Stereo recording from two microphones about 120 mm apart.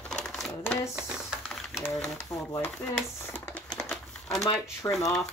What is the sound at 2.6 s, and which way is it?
Speech, 10° left (ahead or behind).